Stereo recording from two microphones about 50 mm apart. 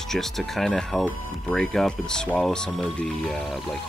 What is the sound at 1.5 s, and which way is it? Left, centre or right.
Speech, centre.